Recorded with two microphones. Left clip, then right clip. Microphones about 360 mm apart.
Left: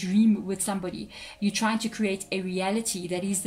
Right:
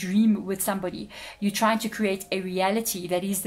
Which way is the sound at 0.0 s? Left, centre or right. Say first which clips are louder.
Even; centre.